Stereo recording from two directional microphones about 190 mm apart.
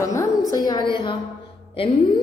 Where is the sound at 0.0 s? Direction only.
15° left (ahead or behind).